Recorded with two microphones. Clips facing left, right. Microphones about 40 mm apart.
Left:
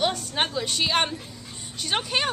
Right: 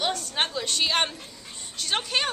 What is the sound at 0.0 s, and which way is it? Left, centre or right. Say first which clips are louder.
A woman's voice: left 2 dB; centre.